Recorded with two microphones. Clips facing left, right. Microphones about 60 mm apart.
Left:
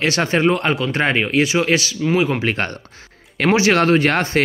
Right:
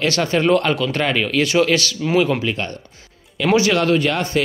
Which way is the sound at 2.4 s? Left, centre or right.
Left.